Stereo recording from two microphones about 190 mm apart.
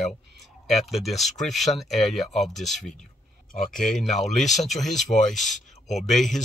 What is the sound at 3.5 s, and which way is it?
Speech, 45° left (ahead or behind).